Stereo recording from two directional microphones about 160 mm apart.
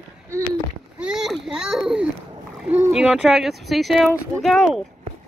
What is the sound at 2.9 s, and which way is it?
Speech, 5° right (ahead or behind).